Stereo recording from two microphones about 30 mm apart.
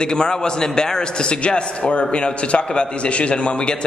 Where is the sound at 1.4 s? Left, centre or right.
Left.